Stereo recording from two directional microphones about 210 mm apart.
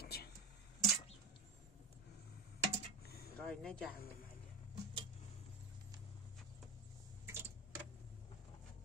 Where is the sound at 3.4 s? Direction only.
5° left (ahead or behind).